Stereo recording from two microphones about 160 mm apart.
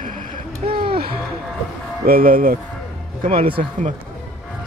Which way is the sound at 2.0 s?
65° right (ahead or behind).